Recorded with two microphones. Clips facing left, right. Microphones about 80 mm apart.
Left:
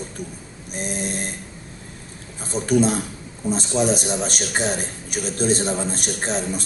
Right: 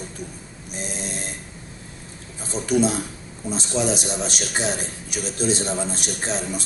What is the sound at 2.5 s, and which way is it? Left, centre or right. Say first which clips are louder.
A man's voice: left 2 dB; left.